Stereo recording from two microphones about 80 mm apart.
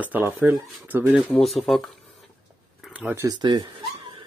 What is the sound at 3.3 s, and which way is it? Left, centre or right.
Speech, right.